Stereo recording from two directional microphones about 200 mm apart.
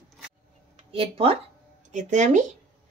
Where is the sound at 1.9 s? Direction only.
40° right (ahead or behind).